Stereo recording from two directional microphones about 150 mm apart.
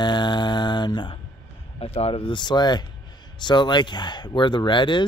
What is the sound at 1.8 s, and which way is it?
Speech, 40° left (ahead or behind).